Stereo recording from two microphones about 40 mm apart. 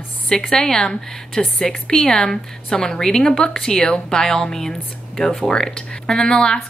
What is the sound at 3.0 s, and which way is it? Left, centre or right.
A woman's voice, centre.